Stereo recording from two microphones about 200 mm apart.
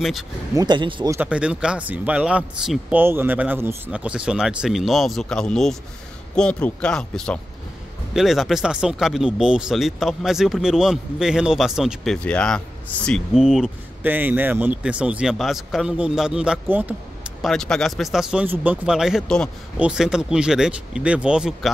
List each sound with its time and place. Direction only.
0.6 s speech: 20° right (ahead or behind)
1.1 s speech: 5° right (ahead or behind)